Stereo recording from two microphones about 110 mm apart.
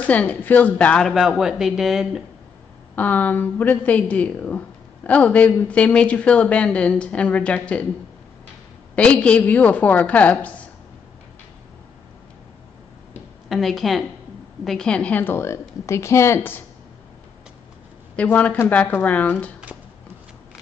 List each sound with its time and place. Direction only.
0.0 s a woman's voice: 15° left (ahead or behind)
1.4 s speech: 5° right (ahead or behind)
3.0 s a woman's voice: 15° left (ahead or behind)
8.9 s a woman's voice: 10° left (ahead or behind)
13.5 s a woman's voice: centre (ahead or behind); by 16.6 s 20° left (ahead or behind)
18.1 s a woman's voice: 15° left (ahead or behind)